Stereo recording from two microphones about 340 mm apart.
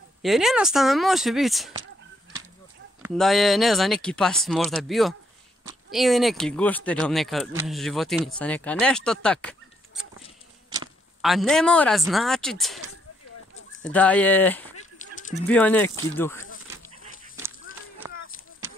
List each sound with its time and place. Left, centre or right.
0.2 s speech: centre
3.0 s speech: centre
11.1 s speech: centre
13.8 s speech: centre
18.0 s a sound: centre